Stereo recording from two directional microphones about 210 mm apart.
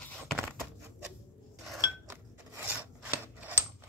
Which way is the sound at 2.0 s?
10° right (ahead or behind).